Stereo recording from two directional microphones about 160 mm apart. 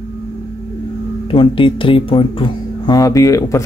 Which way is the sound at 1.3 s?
35° left (ahead or behind).